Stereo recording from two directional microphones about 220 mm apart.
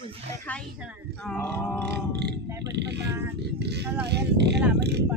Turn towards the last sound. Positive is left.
turn(degrees=-50)  # may be behind; listen again after turning